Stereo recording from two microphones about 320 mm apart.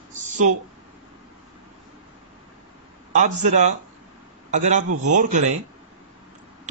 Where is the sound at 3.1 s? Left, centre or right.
Right.